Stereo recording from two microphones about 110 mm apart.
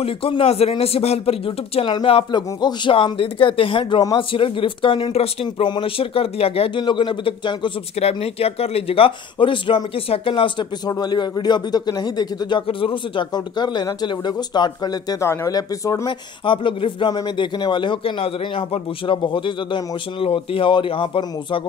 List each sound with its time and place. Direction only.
0.0 s a man's voice: 55° left (ahead or behind)
6.8 s a man's voice: 45° left (ahead or behind)
8.0 s speech: 65° left (ahead or behind); by 10.7 s 50° left (ahead or behind)
10.9 s a man's voice: 40° left (ahead or behind)
16.1 s a man's voice: 50° left (ahead or behind)